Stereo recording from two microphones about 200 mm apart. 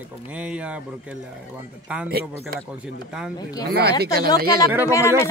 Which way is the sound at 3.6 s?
55° right (ahead or behind).